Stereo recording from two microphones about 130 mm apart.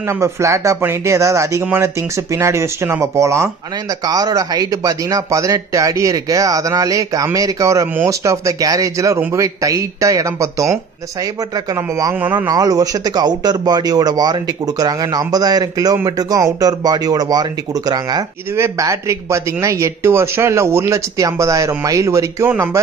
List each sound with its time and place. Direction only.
0.1 s speech: 25° right (ahead or behind)
12.2 s a man's voice: 15° right (ahead or behind)
12.4 s speech: 30° right (ahead or behind)